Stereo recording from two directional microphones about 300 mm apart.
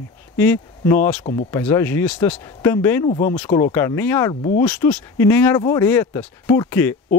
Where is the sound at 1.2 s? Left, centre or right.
Left.